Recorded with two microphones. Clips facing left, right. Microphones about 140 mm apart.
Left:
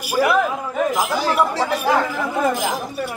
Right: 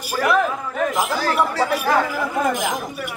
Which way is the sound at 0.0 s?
10° left (ahead or behind).